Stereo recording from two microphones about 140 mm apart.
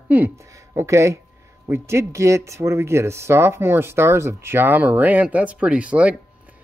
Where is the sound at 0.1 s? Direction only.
15° right (ahead or behind).